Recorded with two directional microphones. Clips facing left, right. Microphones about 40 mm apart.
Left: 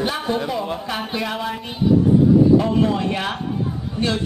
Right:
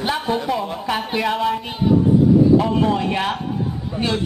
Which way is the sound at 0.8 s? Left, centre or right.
Centre.